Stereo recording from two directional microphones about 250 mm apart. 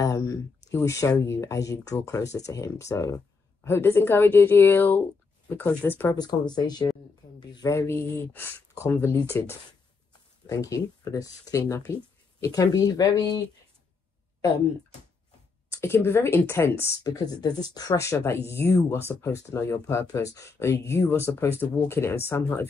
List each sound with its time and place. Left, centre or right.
0.0 s a sound: centre
0.7 s speech: centre
15.7 s speech: centre